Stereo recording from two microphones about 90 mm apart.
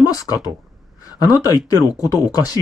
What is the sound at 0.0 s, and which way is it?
Speech, 45° left (ahead or behind).